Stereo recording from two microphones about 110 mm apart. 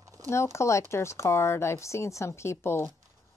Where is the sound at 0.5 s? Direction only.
25° left (ahead or behind).